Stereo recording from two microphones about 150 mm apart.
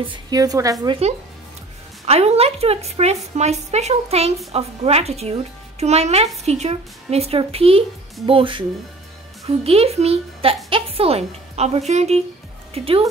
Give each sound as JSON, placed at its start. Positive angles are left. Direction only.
{"t": 0.0, "sound": "a woman's voice", "side_deg": -30}
{"t": 2.0, "sound": "speech", "side_deg": -45}
{"t": 9.7, "sound": "speech", "side_deg": -40}